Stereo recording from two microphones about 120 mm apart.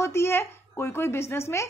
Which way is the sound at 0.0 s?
20° left (ahead or behind).